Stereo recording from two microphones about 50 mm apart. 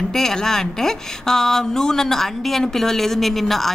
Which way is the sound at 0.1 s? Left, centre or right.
Centre.